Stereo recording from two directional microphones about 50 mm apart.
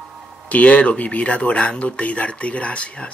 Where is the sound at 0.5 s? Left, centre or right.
Left.